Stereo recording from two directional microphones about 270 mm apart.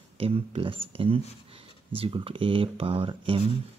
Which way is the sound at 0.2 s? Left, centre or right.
Right.